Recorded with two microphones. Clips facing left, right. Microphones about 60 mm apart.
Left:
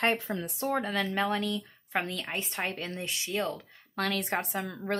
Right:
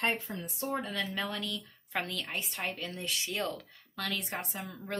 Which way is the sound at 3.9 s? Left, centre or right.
Left.